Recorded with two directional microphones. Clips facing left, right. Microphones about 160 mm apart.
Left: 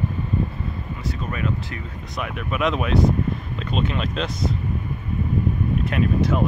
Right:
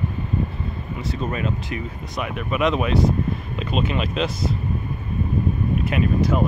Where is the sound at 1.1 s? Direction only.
25° right (ahead or behind).